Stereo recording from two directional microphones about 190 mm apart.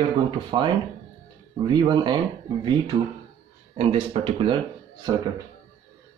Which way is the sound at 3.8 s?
30° right (ahead or behind).